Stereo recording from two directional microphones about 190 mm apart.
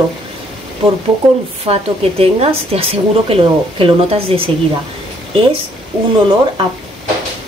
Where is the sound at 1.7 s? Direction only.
35° right (ahead or behind).